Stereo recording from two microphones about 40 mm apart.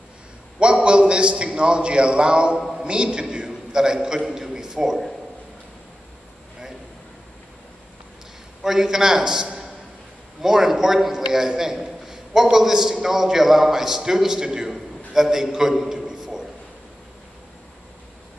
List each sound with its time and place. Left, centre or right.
0.6 s a man's voice: right
4.3 s a sound: centre
8.6 s a man's voice: centre